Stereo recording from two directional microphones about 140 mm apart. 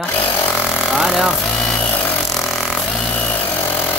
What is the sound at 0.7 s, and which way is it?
Vehicle, centre (ahead or behind).